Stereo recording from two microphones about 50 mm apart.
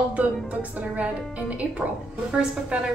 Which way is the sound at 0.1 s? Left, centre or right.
Right.